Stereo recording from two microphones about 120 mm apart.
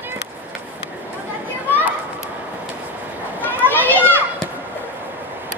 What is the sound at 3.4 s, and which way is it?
Children playing, 15° left (ahead or behind).